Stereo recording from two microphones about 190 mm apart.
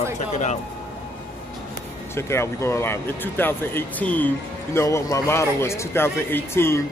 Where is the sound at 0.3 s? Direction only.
35° left (ahead or behind).